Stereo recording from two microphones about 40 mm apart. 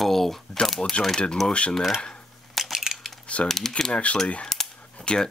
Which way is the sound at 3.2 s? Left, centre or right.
Left.